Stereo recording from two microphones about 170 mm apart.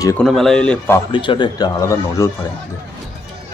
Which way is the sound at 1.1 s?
30° left (ahead or behind).